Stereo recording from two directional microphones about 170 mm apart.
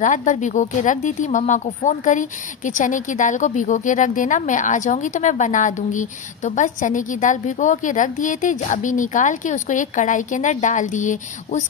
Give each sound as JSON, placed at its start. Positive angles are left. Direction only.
{"t": 0.0, "sound": "a woman's voice", "side_deg": 45}